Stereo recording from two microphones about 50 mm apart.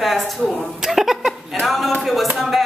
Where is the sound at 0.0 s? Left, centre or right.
Centre.